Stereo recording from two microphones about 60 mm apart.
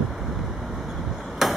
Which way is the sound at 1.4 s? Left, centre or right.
Centre.